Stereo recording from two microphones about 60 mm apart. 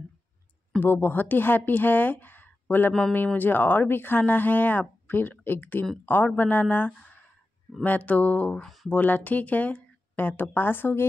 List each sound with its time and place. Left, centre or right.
0.7 s speech: left